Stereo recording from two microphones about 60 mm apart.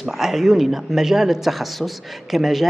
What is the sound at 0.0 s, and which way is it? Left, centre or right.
Speech, centre.